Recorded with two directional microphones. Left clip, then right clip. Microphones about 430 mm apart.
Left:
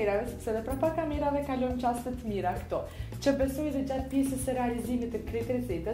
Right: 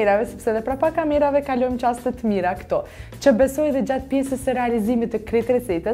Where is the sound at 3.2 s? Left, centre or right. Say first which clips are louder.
Right 12 dB; right.